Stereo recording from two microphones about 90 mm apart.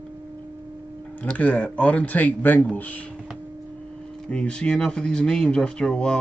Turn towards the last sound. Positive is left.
turn(degrees=10)  # may be behind; listen again after turning